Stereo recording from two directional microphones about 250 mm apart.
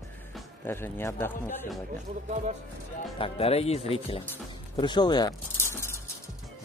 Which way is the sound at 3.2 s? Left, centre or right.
Left.